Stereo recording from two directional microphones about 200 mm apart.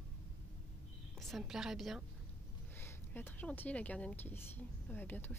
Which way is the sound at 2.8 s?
10° left (ahead or behind).